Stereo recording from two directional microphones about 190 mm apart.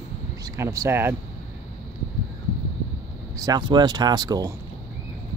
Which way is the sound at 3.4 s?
25° right (ahead or behind).